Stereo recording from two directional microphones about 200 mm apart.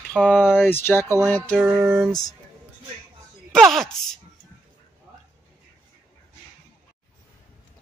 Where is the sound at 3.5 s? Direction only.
Centre (ahead or behind).